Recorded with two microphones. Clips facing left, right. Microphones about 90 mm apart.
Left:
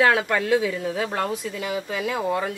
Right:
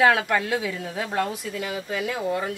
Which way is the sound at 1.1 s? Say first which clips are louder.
Even; 30° left (ahead or behind).